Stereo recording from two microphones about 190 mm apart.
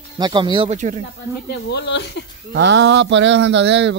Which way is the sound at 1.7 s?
60° left (ahead or behind).